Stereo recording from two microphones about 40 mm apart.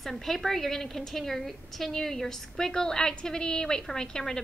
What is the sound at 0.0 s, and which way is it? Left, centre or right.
A woman's voice, centre.